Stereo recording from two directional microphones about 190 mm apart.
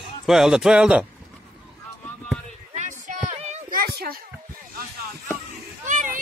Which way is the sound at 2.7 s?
40° right (ahead or behind).